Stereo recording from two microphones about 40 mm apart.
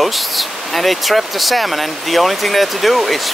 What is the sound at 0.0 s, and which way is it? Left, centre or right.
Speech, centre.